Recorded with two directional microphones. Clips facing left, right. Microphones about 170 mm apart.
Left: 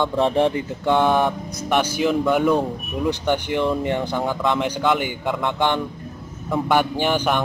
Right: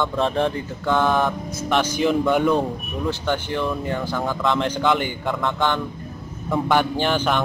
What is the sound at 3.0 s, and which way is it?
Speech, 15° left (ahead or behind).